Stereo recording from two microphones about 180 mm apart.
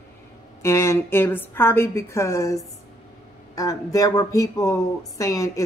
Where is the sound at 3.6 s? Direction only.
20° left (ahead or behind).